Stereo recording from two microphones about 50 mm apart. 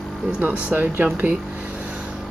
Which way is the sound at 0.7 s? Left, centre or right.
Right.